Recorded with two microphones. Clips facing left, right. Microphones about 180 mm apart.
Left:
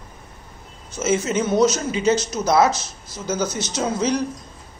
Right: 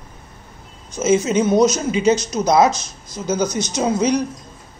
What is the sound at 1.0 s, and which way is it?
Speech, 15° right (ahead or behind).